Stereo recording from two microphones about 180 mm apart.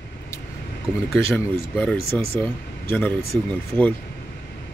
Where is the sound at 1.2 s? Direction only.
10° left (ahead or behind).